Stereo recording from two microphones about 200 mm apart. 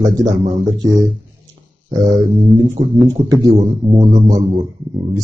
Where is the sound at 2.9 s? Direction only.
15° right (ahead or behind).